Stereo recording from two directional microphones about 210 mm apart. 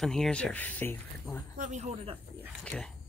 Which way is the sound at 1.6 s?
35° right (ahead or behind).